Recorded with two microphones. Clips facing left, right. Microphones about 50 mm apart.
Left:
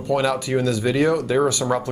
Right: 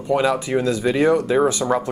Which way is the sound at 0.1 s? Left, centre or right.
Centre.